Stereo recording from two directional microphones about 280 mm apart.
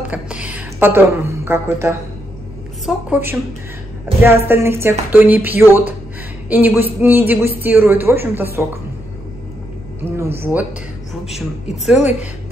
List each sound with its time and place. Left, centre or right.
0.1 s a woman's voice: centre
10.1 s a woman's voice: centre